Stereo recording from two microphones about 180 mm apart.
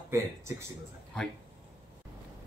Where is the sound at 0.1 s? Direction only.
15° right (ahead or behind).